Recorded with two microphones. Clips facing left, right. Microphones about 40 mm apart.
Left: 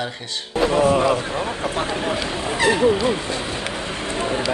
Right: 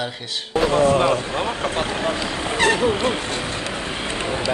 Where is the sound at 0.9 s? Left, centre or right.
Right.